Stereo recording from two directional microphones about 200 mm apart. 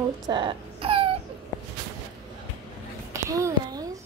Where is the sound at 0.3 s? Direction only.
25° right (ahead or behind).